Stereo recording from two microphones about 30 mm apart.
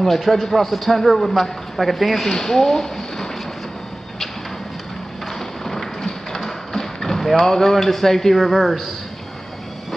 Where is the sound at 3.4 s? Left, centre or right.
Centre.